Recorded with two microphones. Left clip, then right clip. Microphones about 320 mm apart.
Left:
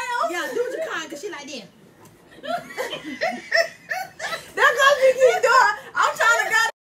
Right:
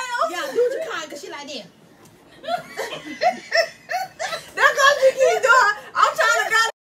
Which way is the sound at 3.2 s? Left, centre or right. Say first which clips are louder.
Right 2 dB; centre.